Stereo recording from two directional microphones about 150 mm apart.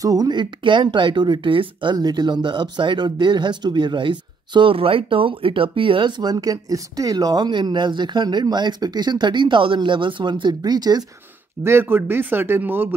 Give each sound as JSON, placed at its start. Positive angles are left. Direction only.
{"t": 0.0, "sound": "speech", "side_deg": -25}
{"t": 11.6, "sound": "speech", "side_deg": -15}